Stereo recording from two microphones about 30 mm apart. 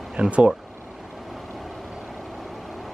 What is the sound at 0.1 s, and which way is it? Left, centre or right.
Speech, right.